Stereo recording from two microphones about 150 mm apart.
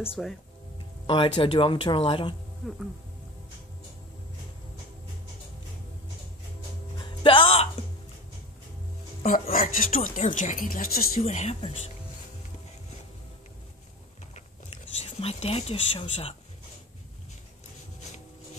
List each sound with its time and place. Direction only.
0.0 s speech: 5° right (ahead or behind)
1.0 s speech: 35° left (ahead or behind)
7.2 s speech: 40° left (ahead or behind)
9.2 s speech: 50° left (ahead or behind)
9.9 s speech: 60° left (ahead or behind)
11.1 s speech: 50° left (ahead or behind)
15.0 s speech: 45° left (ahead or behind)